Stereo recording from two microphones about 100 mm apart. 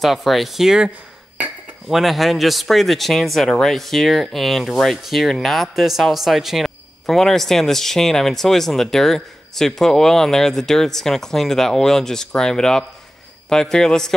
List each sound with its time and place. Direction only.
0.0 s a man's voice: centre (ahead or behind)